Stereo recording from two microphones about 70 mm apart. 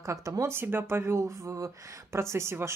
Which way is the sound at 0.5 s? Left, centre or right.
Right.